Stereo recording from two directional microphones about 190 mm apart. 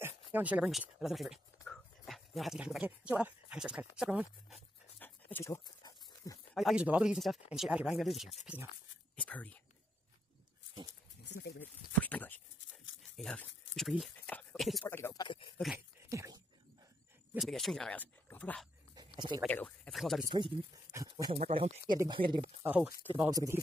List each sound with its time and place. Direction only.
0.0 s speech: 10° right (ahead or behind)
4.9 s dog: 10° left (ahead or behind)
6.5 s speech: centre (ahead or behind)
10.9 s a sound: 65° left (ahead or behind)
12.0 s speech: 10° left (ahead or behind)
14.9 s speech: 10° left (ahead or behind)
16.1 s wild animals: 15° right (ahead or behind)
17.3 s speech: centre (ahead or behind)
18.9 s a sound: 20° right (ahead or behind)
19.4 s speech: 5° left (ahead or behind)
20.2 s speech: 20° right (ahead or behind)
21.5 s speech: 30° right (ahead or behind)
22.6 s speech: 10° right (ahead or behind)